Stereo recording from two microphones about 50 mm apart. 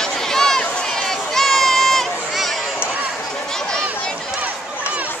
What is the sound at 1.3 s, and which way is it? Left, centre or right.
Crowd, centre.